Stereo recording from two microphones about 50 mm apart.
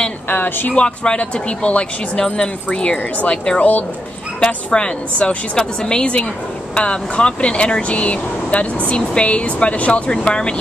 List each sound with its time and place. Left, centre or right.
0.3 s speech: left
0.7 s speech: centre